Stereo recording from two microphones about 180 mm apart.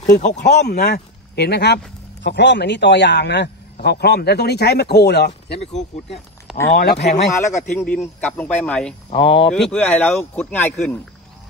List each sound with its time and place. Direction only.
0.0 s speech: 40° left (ahead or behind)
0.4 s speech: 65° left (ahead or behind)
2.2 s a man's voice: 75° left (ahead or behind)
5.6 s speech: 35° left (ahead or behind)
6.7 s a man's voice: 60° left (ahead or behind)
7.1 s speech: 40° left (ahead or behind)
7.7 s speech: 10° left (ahead or behind)